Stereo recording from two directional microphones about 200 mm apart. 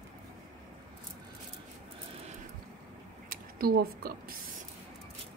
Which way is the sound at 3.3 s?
50° right (ahead or behind).